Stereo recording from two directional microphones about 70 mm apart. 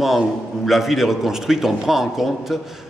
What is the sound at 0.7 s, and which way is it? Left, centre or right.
A man's voice, centre.